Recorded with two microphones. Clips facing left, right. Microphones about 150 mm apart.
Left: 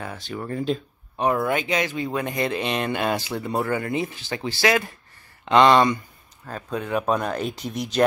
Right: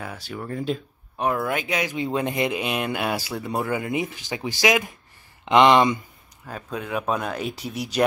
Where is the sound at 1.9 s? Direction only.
20° right (ahead or behind).